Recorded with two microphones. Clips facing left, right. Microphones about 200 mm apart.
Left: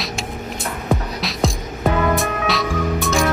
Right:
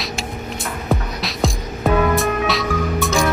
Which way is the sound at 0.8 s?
Centre (ahead or behind).